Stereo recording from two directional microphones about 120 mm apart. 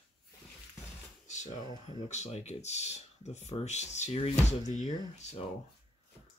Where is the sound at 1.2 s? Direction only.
80° left.